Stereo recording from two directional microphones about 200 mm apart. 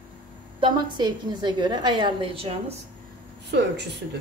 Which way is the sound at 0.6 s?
25° right (ahead or behind).